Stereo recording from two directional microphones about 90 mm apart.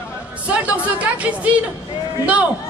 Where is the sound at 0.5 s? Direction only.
15° right (ahead or behind).